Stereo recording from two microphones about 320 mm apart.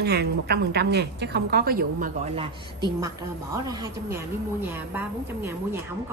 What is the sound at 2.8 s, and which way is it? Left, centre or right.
A woman's voice, centre.